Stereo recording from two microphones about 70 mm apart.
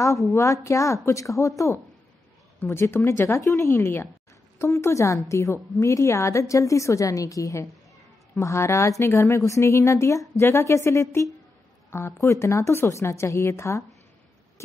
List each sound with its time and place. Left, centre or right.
0.3 s a woman's voice: left
2.6 s speech: left
3.3 s a woman's voice: left